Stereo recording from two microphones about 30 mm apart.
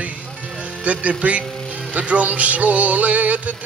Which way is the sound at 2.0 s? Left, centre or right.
Right.